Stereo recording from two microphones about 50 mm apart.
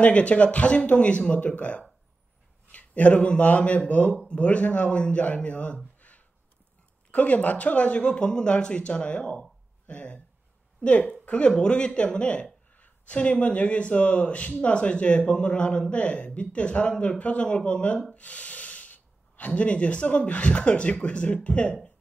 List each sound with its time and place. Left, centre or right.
0.0 s speech: left
5.9 s a sound: left
7.1 s a woman's voice: left